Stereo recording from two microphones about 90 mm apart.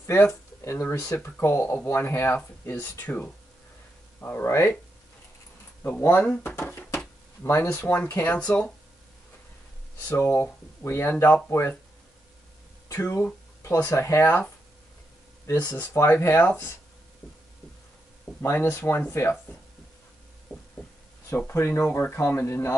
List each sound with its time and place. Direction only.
0.3 s speech: 25° left (ahead or behind)
4.5 s speech: 30° left (ahead or behind)
5.9 s speech: 20° left (ahead or behind)
6.8 s a sound: 15° left (ahead or behind)
7.4 s speech: 30° left (ahead or behind); by 8.7 s 10° left (ahead or behind)
10.0 s speech: 25° left (ahead or behind)
12.8 s speech: 30° left (ahead or behind)
15.8 s speech: 25° left (ahead or behind)
18.4 s speech: 30° left (ahead or behind)
21.5 s speech: 25° left (ahead or behind)